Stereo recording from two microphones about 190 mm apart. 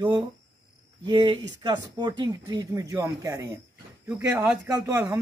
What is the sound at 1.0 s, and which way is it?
A man's voice, 25° right (ahead or behind).